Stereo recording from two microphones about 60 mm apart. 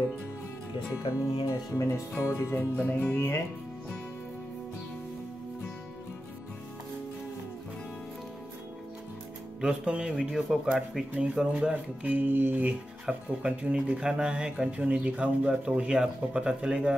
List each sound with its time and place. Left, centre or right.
0.9 s speech: left
2.2 s speech: left
2.8 s speech: left
3.2 s speech: left
9.6 s speech: centre
11.7 s music: right
13.0 s speech: centre